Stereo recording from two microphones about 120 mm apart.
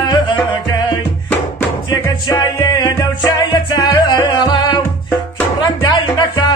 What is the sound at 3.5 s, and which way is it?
Music, 40° left (ahead or behind).